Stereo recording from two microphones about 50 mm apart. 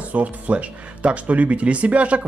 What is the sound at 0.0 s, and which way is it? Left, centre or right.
Speech, right.